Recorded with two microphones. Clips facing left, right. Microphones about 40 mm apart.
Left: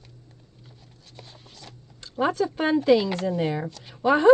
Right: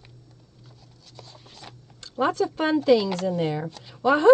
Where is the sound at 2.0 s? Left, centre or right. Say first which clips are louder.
Even; centre.